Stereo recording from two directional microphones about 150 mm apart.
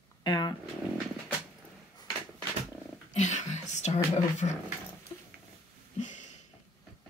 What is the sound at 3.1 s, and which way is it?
Speech, 50° left (ahead or behind).